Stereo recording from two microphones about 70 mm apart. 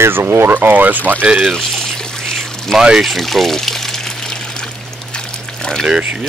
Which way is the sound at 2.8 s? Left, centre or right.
Centre.